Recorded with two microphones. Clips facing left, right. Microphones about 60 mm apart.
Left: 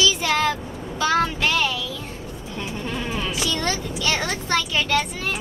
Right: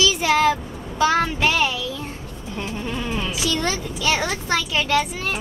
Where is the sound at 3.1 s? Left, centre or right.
Centre.